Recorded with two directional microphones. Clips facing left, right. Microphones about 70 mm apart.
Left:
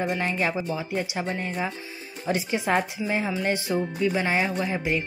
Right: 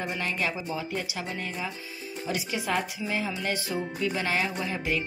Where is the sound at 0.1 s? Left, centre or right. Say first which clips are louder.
Left 4 dB; left.